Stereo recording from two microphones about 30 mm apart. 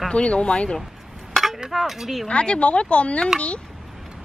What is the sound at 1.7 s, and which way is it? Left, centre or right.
Speech, centre.